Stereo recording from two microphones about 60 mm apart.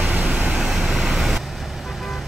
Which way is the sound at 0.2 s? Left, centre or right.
Centre.